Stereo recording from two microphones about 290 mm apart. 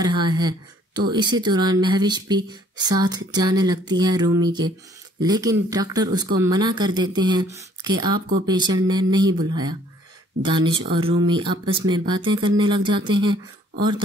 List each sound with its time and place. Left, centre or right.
0.0 s speech: centre